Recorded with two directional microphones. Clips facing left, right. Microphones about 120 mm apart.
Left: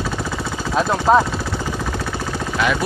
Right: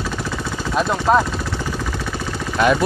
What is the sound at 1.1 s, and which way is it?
Speech, 25° left (ahead or behind).